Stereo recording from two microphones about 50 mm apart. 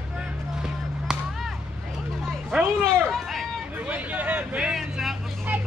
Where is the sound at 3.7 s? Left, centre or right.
Right.